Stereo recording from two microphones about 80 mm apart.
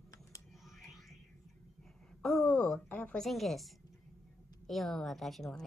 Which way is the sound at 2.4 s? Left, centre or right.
Centre.